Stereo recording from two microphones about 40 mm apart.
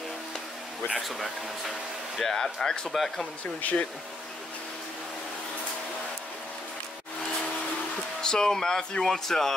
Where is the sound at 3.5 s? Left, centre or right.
Left.